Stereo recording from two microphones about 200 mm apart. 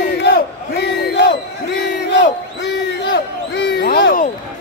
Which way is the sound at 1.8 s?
60° left (ahead or behind).